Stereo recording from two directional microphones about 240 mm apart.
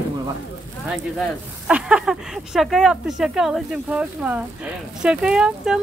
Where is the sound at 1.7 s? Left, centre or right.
Centre.